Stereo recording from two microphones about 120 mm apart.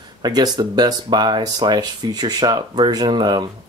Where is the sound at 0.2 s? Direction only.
35° right (ahead or behind).